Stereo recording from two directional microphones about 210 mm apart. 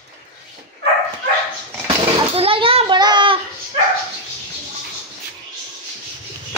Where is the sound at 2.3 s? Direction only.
25° right (ahead or behind).